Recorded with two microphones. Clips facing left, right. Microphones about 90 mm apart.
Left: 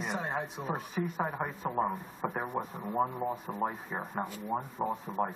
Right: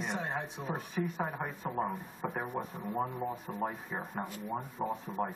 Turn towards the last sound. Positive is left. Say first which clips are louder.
# left 2 dB
turn(degrees=0)  # may be behind; listen again after turning